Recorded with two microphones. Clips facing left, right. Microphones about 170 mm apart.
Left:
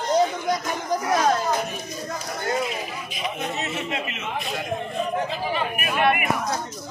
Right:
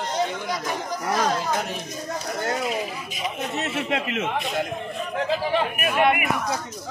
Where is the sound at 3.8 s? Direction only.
90° right.